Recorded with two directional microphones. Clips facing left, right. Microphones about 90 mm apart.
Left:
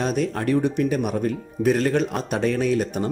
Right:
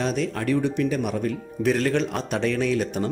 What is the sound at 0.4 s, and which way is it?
Speech, 35° left (ahead or behind).